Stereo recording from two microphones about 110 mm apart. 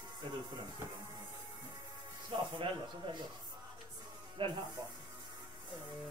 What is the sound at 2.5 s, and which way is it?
Speech, 50° right (ahead or behind).